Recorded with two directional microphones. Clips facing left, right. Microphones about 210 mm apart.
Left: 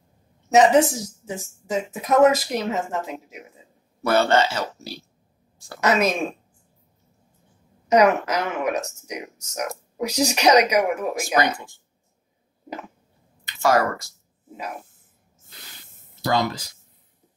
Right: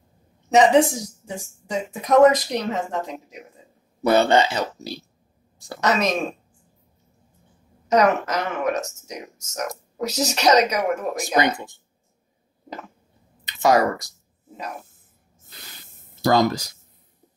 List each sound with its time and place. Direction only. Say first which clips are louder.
0.5 s speech: even; centre (ahead or behind)
4.0 s speech: right 2 dB; 15° right (ahead or behind)
5.8 s speech: left 1 dB; 10° left (ahead or behind)
7.9 s speech: left 1 dB; 10° left (ahead or behind)
11.5 s speech: right 3 dB; 20° right (ahead or behind)
13.5 s speech: right 2 dB; 20° right (ahead or behind)
16.2 s speech: right 5 dB; 40° right (ahead or behind)